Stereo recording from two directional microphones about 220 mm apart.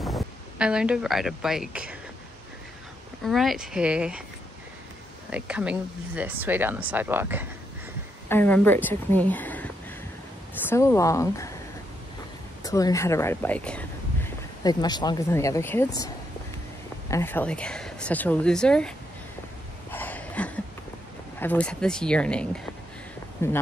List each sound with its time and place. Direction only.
0.0 s speech: centre (ahead or behind)
3.3 s a woman's voice: centre (ahead or behind)
5.3 s speech: 5° right (ahead or behind)
8.3 s speech: 10° left (ahead or behind)
10.7 s speech: 10° left (ahead or behind)
12.6 s speech: 15° left (ahead or behind)
14.6 s speech: 20° left (ahead or behind)
17.1 s a woman's voice: 10° left (ahead or behind)
19.9 s a sound: 10° left (ahead or behind)
21.4 s a woman's voice: 5° left (ahead or behind)